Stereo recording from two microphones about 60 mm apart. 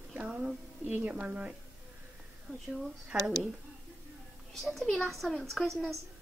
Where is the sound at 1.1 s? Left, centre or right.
Centre.